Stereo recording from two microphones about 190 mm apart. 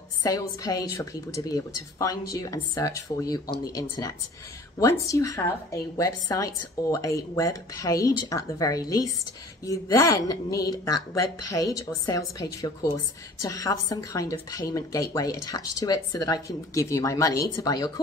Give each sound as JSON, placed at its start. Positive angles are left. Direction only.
{"t": 0.2, "sound": "a woman's voice", "side_deg": 20}